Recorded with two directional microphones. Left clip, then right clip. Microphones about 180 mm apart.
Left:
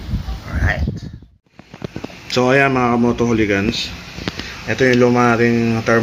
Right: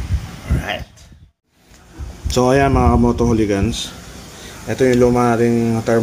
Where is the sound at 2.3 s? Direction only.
20° right (ahead or behind).